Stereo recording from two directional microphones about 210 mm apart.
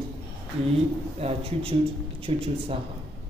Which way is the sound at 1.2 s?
25° right (ahead or behind).